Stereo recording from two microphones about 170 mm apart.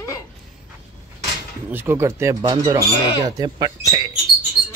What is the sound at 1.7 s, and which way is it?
Speech, 15° right (ahead or behind).